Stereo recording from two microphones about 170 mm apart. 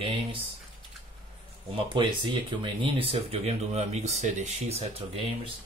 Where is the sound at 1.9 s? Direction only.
30° right (ahead or behind); by 4.5 s 45° right (ahead or behind).